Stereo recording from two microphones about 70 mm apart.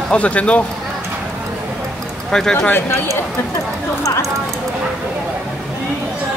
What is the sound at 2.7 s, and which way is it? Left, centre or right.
Speech, left.